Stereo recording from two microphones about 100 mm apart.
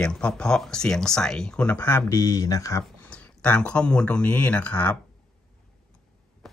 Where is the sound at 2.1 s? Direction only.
35° left (ahead or behind).